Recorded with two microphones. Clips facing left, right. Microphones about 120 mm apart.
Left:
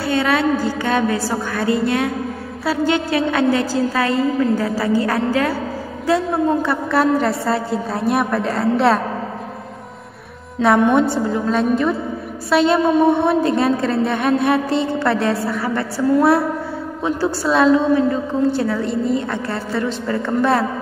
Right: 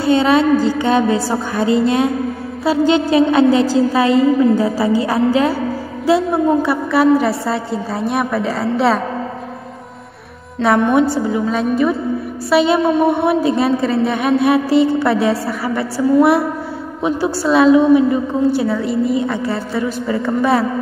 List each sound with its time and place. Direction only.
0.0 s a woman's voice: 20° right (ahead or behind); by 9.0 s centre (ahead or behind)
10.6 s a woman's voice: centre (ahead or behind)